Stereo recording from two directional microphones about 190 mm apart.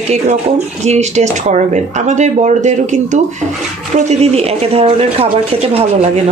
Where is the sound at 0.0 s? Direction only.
35° right (ahead or behind).